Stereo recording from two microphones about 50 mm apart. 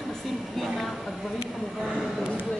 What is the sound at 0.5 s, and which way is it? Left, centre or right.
Speech, centre.